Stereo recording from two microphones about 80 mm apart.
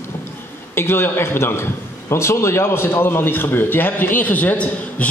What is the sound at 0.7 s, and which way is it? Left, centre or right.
A man's voice, left.